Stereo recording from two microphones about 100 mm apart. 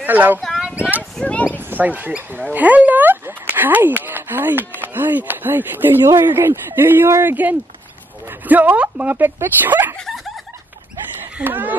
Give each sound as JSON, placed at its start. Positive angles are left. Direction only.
{"t": 0.0, "sound": "speech", "side_deg": -15}
{"t": 0.4, "sound": "a sound", "side_deg": -5}
{"t": 1.1, "sound": "speech", "side_deg": 10}
{"t": 1.6, "sound": "speech", "side_deg": -20}
{"t": 9.9, "sound": "a sound", "side_deg": 0}
{"t": 11.3, "sound": "speech", "side_deg": -20}